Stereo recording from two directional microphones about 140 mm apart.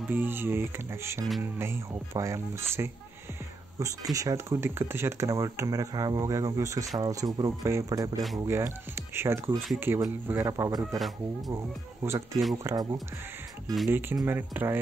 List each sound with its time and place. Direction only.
0.1 s speech: 15° right (ahead or behind)
13.8 s speech: 15° right (ahead or behind)